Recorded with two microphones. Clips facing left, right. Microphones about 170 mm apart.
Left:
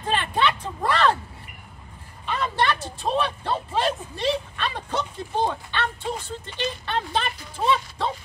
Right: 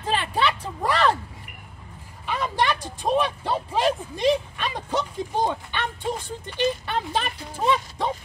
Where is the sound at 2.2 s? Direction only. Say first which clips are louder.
Even; 10° right (ahead or behind).